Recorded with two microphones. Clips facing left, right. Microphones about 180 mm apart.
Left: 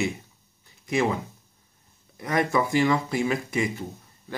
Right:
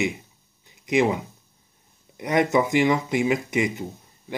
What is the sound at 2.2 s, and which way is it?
Speech, 20° right (ahead or behind).